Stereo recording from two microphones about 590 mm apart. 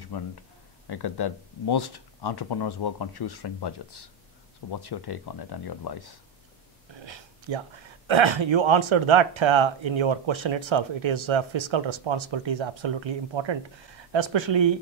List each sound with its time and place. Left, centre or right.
0.1 s speech: left
7.1 s a sound: right
8.1 s speech: right